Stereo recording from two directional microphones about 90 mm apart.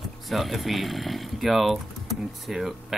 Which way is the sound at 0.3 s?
Centre (ahead or behind).